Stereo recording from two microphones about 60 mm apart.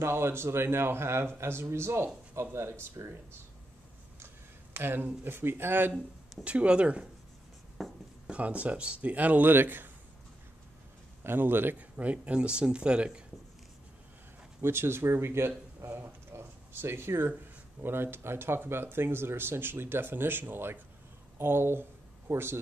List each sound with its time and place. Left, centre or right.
0.0 s a man's voice: right
4.7 s speech: right
6.4 s speech: centre
7.8 s writing: centre
8.3 s speech: right
11.2 s speech: right; by 13.2 s centre
14.6 s a man's voice: right
16.0 s a sound: right
17.8 s a man's voice: right